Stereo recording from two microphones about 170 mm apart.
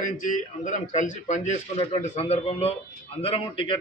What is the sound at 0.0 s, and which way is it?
A man's voice, 50° left (ahead or behind).